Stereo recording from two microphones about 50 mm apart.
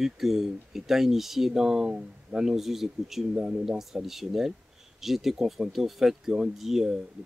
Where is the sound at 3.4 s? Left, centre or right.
Centre.